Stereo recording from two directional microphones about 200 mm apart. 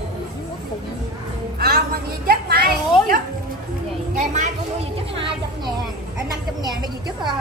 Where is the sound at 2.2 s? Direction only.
45° right (ahead or behind).